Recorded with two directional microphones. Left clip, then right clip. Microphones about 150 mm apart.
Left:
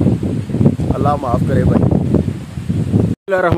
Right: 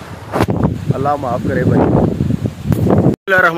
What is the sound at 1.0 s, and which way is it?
Speech, 10° left (ahead or behind).